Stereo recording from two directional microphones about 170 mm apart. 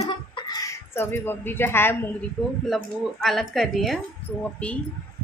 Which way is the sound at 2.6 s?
Centre (ahead or behind).